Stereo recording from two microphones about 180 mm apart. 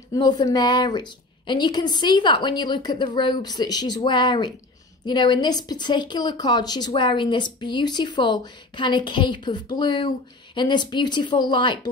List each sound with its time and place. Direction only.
0.1 s speech: 20° left (ahead or behind)